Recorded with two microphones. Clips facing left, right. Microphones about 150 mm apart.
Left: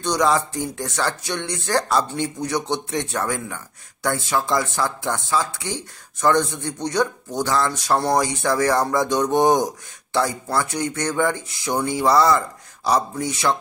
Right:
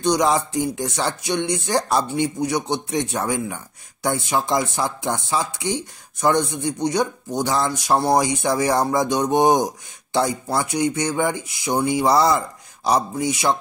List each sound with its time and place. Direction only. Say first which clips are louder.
0.0 s speech: right 1 dB; 15° right (ahead or behind)